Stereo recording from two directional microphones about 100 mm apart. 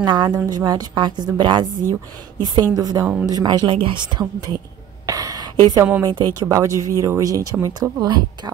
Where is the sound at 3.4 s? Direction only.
50° right (ahead or behind).